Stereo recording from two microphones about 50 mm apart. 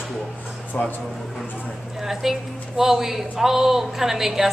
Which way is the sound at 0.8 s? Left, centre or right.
Left.